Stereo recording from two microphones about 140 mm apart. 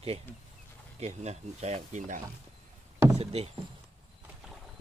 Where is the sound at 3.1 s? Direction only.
45° right (ahead or behind).